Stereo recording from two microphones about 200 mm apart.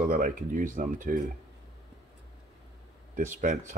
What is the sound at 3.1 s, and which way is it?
Speech, 40° right (ahead or behind).